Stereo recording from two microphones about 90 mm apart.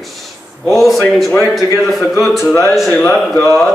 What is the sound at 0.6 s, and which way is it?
A man's voice, 5° left (ahead or behind).